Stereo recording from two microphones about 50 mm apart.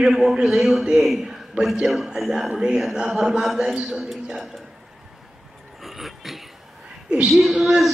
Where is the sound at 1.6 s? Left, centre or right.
Right.